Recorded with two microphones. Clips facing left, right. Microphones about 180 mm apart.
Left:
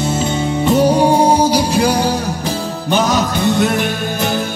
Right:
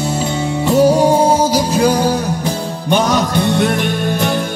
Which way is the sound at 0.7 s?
15° left (ahead or behind).